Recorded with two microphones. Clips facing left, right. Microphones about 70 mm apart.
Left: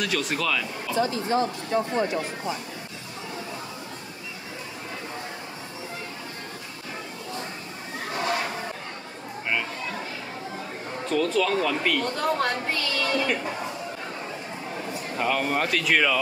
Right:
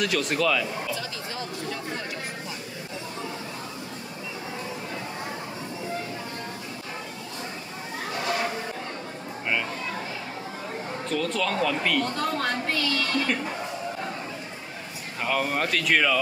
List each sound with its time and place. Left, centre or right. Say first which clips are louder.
0.0 s speech: right 2 dB; centre
0.9 s speech: left 10 dB; left
11.1 s speech: left 4 dB; centre
15.1 s speech: left 1 dB; centre